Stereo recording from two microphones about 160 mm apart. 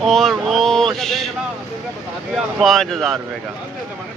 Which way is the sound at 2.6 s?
Centre (ahead or behind).